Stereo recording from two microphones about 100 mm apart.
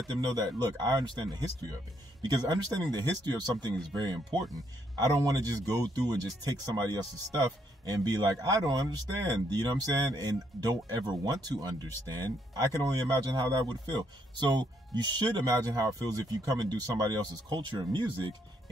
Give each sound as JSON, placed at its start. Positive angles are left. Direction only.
{"t": 0.2, "sound": "speech", "side_deg": -40}
{"t": 12.8, "sound": "speech", "side_deg": -40}